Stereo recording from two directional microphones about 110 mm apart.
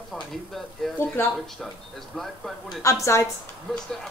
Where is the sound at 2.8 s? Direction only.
25° left (ahead or behind).